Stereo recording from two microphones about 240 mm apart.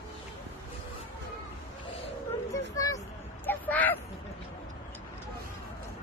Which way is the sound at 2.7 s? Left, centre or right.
Centre.